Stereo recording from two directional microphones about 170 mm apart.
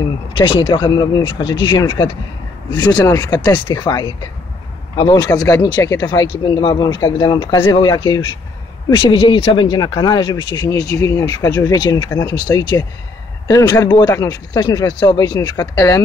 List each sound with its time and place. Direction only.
0.4 s speech: 30° left (ahead or behind)